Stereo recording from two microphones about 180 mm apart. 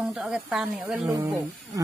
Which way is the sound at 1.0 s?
20° right (ahead or behind).